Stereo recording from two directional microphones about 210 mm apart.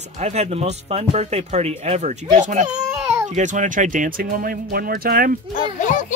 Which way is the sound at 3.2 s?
35° right (ahead or behind).